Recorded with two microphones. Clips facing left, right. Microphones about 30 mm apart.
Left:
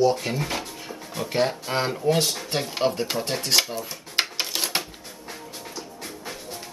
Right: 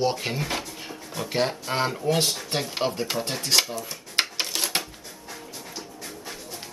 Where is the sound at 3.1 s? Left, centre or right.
Centre.